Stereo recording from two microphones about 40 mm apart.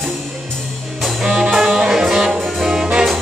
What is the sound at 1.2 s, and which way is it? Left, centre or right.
Music, centre.